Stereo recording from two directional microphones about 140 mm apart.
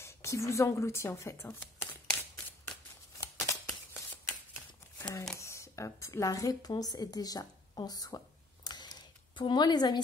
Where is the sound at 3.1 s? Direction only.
20° left (ahead or behind).